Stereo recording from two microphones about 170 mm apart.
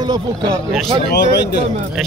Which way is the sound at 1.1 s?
80° left.